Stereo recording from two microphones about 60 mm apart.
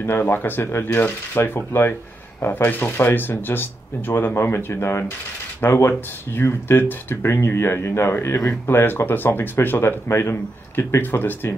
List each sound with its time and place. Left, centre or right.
0.0 s speech: left